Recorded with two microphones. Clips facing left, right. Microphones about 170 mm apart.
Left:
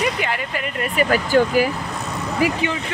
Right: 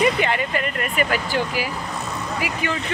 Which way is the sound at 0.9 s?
45° left (ahead or behind).